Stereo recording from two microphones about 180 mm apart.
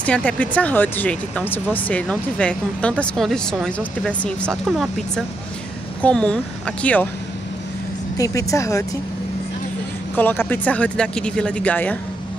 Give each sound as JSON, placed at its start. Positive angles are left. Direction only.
{"t": 0.0, "sound": "speech", "side_deg": 5}
{"t": 8.2, "sound": "speech", "side_deg": 20}
{"t": 10.1, "sound": "speech", "side_deg": 10}